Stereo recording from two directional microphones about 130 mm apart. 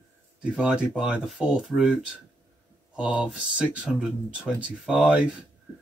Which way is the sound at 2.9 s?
5° right (ahead or behind).